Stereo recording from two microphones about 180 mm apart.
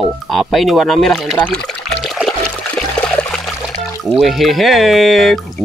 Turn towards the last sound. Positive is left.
turn(degrees=0)  # may be behind; listen again after turning